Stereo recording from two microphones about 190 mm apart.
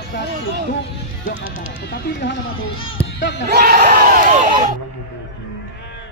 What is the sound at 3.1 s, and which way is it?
Battle cry, 65° left (ahead or behind).